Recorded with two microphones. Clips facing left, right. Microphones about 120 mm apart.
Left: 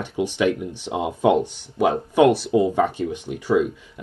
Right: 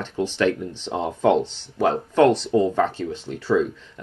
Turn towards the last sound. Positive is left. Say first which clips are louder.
# left 1 dB
turn(degrees=10)  # may be behind; listen again after turning